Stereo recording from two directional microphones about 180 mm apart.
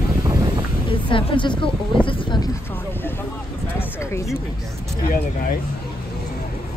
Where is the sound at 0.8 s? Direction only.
30° left (ahead or behind).